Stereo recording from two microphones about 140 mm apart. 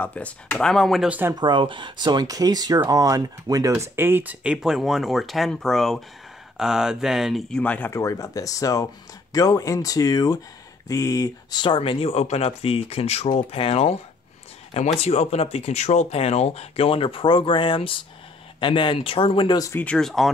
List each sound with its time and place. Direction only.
0.0 s speech: 10° left (ahead or behind)
1.0 s speech: 10° right (ahead or behind)
1.3 s speech: 35° right (ahead or behind); by 7.6 s centre (ahead or behind)
7.6 s speech: 10° left (ahead or behind)
7.9 s speech: 20° left (ahead or behind)
19.7 s speech: 10° left (ahead or behind)